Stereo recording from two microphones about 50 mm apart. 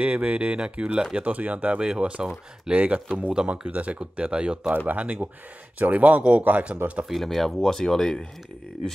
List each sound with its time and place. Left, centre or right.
0.0 s speech: right
4.6 s speech: right
7.1 s speech: centre